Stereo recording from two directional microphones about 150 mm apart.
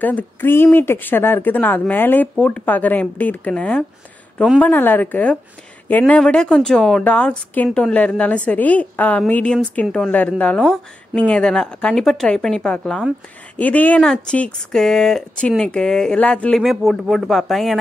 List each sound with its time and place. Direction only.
0.0 s a woman's voice: 10° left (ahead or behind)